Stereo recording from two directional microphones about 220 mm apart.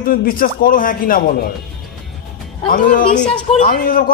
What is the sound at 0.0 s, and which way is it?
Speech, 40° left (ahead or behind).